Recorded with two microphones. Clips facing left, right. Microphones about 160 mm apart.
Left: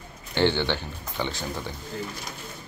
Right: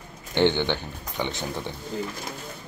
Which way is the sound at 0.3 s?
20° right (ahead or behind).